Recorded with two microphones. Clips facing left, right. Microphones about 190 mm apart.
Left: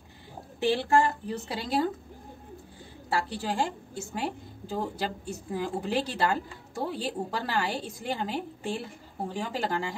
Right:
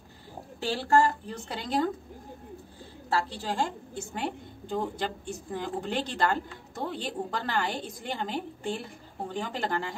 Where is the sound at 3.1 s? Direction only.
10° left (ahead or behind).